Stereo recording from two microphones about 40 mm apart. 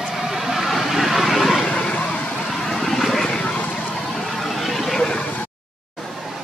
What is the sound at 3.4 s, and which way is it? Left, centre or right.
Vehicle, left.